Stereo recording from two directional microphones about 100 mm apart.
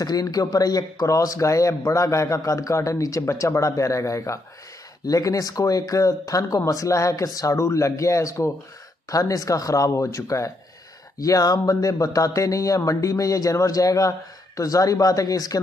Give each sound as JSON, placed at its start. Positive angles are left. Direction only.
{"t": 0.0, "sound": "speech", "side_deg": 40}